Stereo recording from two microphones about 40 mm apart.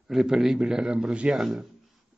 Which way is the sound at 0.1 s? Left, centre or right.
Centre.